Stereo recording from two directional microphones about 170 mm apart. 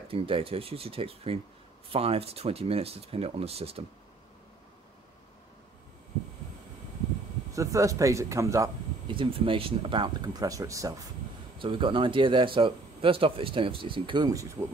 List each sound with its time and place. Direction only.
0.1 s speech: 35° right (ahead or behind)
7.5 s speech: 20° right (ahead or behind)
9.1 s speech: 30° right (ahead or behind)
11.5 s speech: 30° right (ahead or behind)
14.3 s speech: 20° right (ahead or behind)